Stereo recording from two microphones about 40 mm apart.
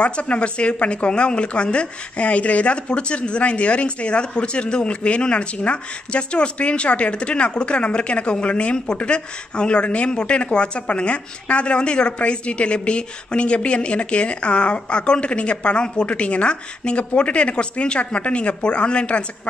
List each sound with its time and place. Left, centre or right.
0.0 s speech: left